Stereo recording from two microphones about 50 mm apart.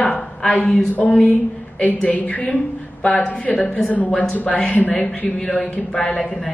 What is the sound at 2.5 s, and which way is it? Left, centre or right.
A woman's voice, centre.